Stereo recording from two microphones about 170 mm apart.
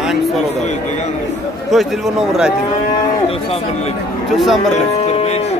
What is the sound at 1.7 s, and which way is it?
Speech, centre (ahead or behind).